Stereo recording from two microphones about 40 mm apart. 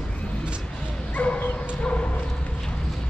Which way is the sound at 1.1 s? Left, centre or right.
Left.